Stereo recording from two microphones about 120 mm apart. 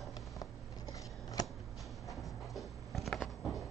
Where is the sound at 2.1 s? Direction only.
Centre (ahead or behind).